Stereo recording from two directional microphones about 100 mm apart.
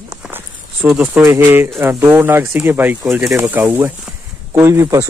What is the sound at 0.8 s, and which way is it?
Speech, 5° right (ahead or behind).